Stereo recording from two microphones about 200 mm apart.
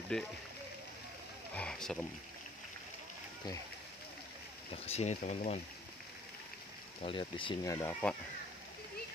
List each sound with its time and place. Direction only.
0.1 s speech: 5° left (ahead or behind)
1.5 s speech: 5° left (ahead or behind)
4.8 s speech: 35° left (ahead or behind)
7.0 s speech: 25° left (ahead or behind)
7.7 s speech: 10° left (ahead or behind)